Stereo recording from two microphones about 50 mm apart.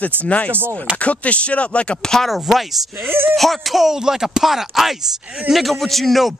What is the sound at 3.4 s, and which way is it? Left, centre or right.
Speech, centre.